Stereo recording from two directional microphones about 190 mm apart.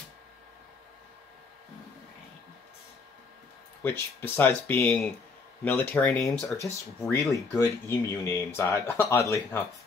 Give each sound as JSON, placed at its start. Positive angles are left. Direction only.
{"t": 3.8, "sound": "speech", "side_deg": 10}
{"t": 6.4, "sound": "speech", "side_deg": 15}